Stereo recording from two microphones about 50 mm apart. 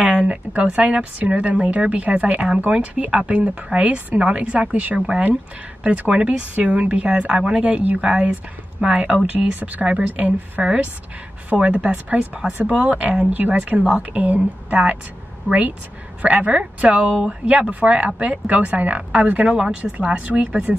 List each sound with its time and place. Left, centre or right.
0.0 s a sound: centre
0.5 s a woman's voice: right
9.6 s a woman's voice: right
19.5 s a woman's voice: right